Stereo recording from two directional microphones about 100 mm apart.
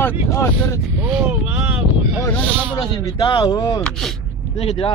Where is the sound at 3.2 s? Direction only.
50° left (ahead or behind).